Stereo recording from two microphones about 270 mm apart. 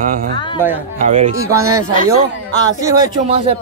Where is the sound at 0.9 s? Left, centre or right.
Right.